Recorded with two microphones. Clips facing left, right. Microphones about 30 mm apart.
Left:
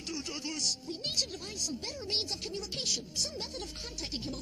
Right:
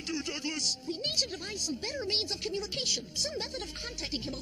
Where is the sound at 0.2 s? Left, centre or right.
Right.